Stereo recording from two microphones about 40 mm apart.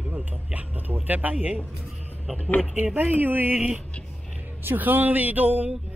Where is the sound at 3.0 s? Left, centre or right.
Right.